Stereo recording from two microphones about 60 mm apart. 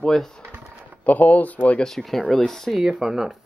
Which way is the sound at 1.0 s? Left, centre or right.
Left.